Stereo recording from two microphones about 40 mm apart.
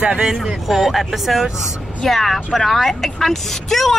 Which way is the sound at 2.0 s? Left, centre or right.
Centre.